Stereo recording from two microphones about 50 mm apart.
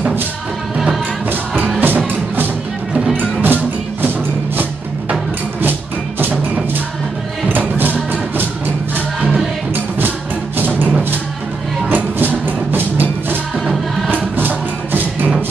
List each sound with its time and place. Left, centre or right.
1.8 s music: right
5.6 s music: right
7.4 s music: right
11.9 s music: right